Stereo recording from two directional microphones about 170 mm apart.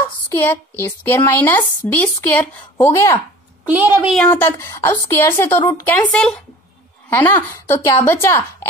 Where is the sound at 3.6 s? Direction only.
10° right (ahead or behind).